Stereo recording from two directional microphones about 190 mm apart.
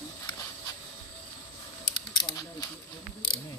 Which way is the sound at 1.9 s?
25° left (ahead or behind).